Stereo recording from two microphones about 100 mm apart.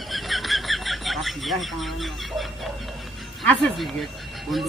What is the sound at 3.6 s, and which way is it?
Speech, centre (ahead or behind).